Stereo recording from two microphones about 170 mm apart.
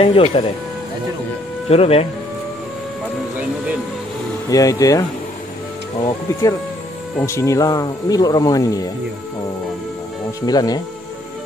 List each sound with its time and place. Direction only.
0.0 s speech: 35° left (ahead or behind)
1.7 s speech: 35° left (ahead or behind)
4.5 s speech: 20° left (ahead or behind)
10.4 s speech: 25° left (ahead or behind)